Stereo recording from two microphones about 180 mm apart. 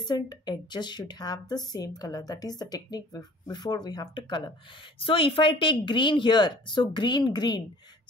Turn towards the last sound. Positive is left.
turn(degrees=25)  # may be behind; listen again after turning